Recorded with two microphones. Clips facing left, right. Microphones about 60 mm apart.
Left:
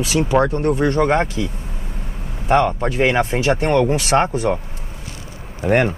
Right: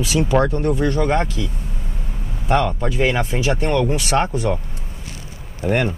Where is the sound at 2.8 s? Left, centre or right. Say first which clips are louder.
Left 3 dB; left.